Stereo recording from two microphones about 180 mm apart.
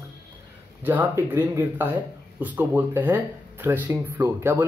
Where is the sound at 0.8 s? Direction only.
10° right (ahead or behind).